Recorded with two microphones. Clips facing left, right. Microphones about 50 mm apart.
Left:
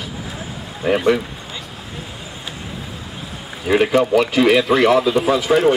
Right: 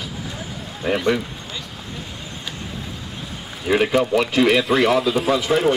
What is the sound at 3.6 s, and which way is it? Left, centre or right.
Speech, centre.